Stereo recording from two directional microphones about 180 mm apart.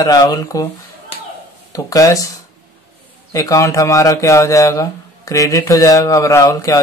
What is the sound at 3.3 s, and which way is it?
Speech, 15° left (ahead or behind).